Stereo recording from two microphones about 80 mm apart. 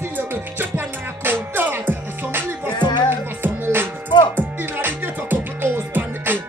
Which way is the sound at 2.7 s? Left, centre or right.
Left.